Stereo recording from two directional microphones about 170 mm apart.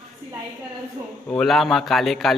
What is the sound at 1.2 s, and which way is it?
Speech, 5° left (ahead or behind).